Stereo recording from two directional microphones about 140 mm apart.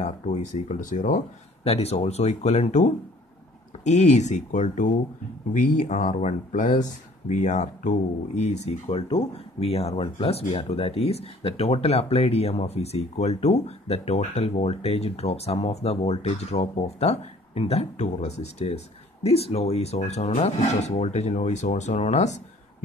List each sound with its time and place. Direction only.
0.0 s speech: 60° left (ahead or behind)
1.6 s speech: 45° left (ahead or behind)